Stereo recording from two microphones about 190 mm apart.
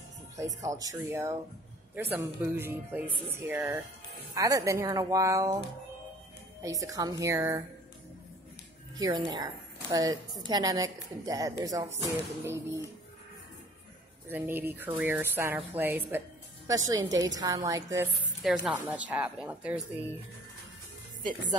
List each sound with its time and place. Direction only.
0.4 s speech: 15° right (ahead or behind)
6.6 s speech: 15° right (ahead or behind)
8.9 s a woman's voice: 20° right (ahead or behind)
14.3 s a woman's voice: 10° right (ahead or behind)
18.4 s speech: centre (ahead or behind)